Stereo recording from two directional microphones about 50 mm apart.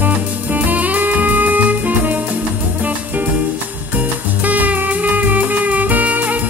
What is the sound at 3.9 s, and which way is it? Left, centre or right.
Music, right.